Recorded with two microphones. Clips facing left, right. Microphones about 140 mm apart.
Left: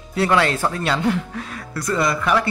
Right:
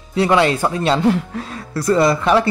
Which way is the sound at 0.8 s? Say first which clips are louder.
Right 7 dB; 30° right (ahead or behind).